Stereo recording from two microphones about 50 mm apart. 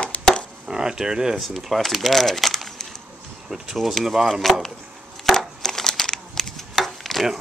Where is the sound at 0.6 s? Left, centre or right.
Centre.